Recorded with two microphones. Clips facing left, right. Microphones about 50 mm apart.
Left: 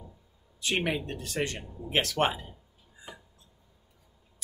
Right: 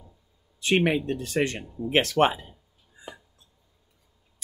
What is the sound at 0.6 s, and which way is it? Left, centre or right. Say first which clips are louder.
Speech: right 7 dB; right.